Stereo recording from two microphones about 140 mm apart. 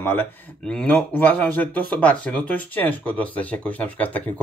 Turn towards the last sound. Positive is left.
turn(degrees=10)  # may be behind; listen again after turning